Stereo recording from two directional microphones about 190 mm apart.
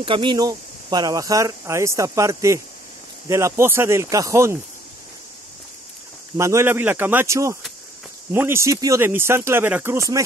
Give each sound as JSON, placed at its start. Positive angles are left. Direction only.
{"t": 0.0, "sound": "speech", "side_deg": -25}
{"t": 6.3, "sound": "speech", "side_deg": -15}